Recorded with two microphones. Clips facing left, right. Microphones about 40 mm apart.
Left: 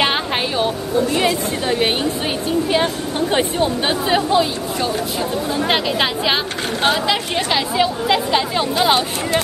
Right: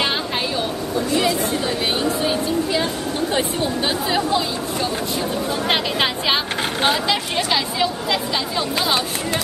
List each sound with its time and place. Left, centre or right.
1.8 s speech: left
5.7 s a woman's voice: centre
8.3 s speech: left